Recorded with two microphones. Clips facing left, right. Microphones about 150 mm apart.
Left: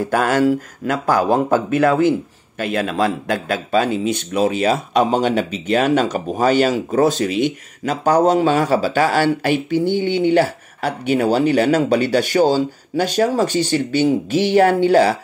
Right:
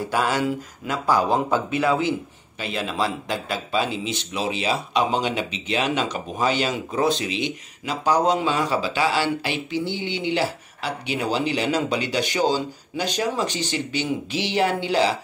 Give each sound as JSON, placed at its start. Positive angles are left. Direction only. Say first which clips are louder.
{"t": 0.0, "sound": "a man's voice", "louder": "left 7 dB", "side_deg": 50}